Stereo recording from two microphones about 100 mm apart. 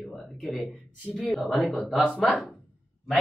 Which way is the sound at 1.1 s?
Centre (ahead or behind).